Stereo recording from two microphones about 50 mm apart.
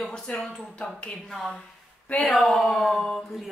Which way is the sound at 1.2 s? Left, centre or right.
Centre.